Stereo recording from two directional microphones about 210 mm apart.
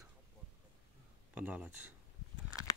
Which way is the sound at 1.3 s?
5° right (ahead or behind).